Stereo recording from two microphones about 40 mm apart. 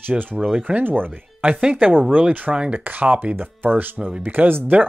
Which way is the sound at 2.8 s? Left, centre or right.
Right.